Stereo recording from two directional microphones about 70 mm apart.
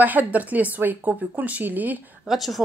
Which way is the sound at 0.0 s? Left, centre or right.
Right.